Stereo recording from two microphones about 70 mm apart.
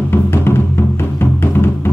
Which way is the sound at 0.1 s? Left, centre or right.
Left.